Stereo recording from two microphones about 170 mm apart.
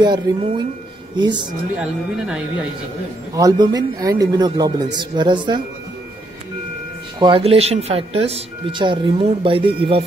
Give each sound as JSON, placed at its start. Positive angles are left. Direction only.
{"t": 0.0, "sound": "a man's voice", "side_deg": -25}
{"t": 1.8, "sound": "speech", "side_deg": -5}
{"t": 3.3, "sound": "a man's voice", "side_deg": -20}
{"t": 7.2, "sound": "speech", "side_deg": -30}